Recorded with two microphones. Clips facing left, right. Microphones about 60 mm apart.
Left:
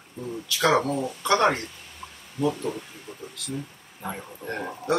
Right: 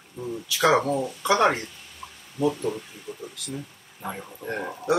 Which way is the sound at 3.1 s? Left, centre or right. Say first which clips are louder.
Right 4 dB; left.